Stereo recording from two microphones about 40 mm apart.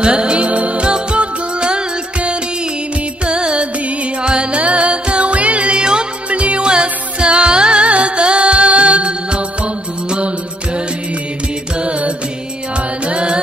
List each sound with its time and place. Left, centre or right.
0.0 s music: right
11.8 s music: right